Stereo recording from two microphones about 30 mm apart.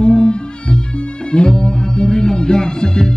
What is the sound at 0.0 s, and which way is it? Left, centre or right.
Music, left.